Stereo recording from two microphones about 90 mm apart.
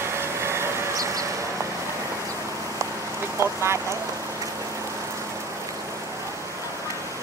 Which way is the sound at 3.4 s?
40° right (ahead or behind).